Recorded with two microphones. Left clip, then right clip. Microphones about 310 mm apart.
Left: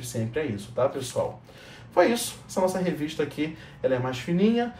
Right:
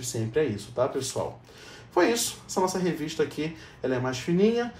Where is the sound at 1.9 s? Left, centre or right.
Centre.